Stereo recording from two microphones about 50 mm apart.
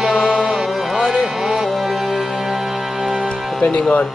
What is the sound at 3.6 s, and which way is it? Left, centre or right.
Speech, left.